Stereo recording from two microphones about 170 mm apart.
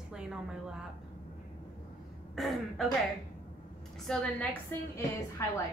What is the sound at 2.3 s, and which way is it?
Speech, centre (ahead or behind).